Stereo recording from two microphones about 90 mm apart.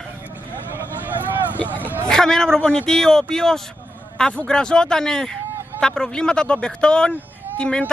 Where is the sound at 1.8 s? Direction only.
20° right (ahead or behind).